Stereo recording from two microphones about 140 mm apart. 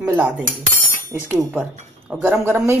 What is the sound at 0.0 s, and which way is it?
Cutlery, 10° right (ahead or behind).